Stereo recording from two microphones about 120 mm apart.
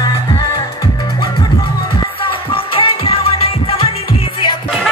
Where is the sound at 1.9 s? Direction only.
45° left (ahead or behind).